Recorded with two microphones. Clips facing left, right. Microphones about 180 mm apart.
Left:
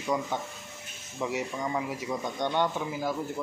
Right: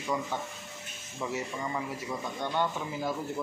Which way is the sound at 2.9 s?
5° left (ahead or behind).